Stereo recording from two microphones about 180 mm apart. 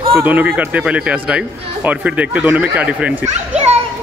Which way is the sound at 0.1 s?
10° right (ahead or behind).